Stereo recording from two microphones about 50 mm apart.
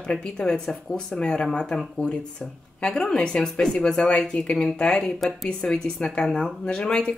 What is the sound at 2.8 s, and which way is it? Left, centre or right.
A woman's voice, centre.